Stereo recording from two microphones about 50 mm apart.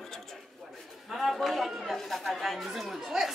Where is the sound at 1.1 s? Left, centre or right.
Centre.